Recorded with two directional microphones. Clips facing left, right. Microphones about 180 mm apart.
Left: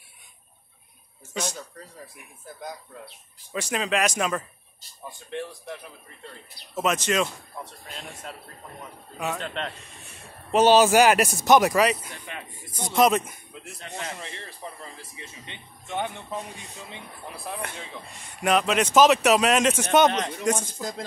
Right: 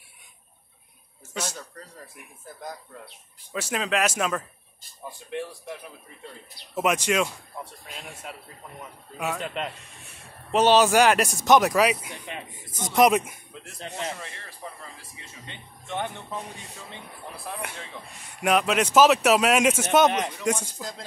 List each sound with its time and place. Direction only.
1.3 s speech: 5° right (ahead or behind)
3.5 s speech: 5° right (ahead or behind)
10.5 s speech: 5° left (ahead or behind); by 13.3 s 10° right (ahead or behind)
13.7 s speech: 25° right (ahead or behind)
18.4 s speech: 5° right (ahead or behind)